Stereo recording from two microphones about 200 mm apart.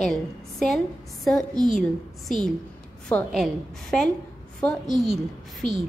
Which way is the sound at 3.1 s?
Centre (ahead or behind).